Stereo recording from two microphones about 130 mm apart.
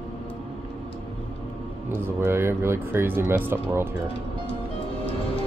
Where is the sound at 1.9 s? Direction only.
20° right (ahead or behind).